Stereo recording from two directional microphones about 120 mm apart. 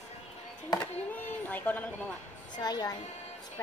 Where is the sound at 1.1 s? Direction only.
15° left (ahead or behind).